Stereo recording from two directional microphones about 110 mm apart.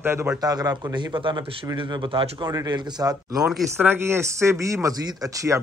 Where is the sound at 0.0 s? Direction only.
25° right (ahead or behind).